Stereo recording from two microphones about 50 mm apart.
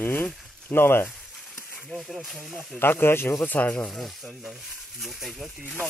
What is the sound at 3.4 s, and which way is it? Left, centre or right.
Speech, left.